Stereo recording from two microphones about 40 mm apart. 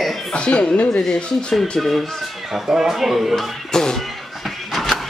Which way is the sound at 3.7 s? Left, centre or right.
Centre.